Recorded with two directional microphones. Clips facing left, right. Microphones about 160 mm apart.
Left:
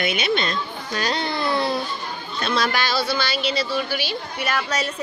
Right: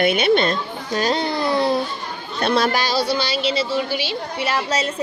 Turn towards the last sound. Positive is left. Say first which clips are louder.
# right 3 dB
turn(degrees=-25)  # may be behind; listen again after turning